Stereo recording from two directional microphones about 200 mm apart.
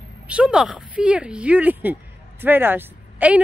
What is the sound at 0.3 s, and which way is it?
Speech, 5° right (ahead or behind).